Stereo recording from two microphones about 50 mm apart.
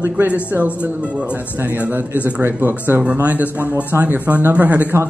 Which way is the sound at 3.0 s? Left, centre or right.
Right.